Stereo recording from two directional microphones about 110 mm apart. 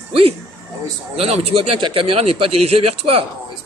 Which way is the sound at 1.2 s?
65° right (ahead or behind).